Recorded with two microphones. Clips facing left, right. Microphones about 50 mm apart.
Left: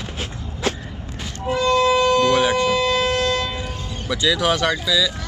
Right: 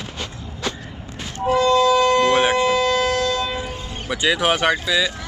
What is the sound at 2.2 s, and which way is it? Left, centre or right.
Siren, right.